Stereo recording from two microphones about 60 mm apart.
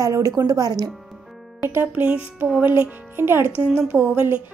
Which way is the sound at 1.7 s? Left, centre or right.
Right.